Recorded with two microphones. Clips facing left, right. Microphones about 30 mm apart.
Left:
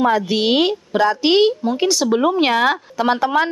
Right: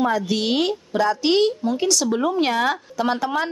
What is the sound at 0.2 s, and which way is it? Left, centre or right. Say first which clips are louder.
A woman's voice: left 5 dB; left.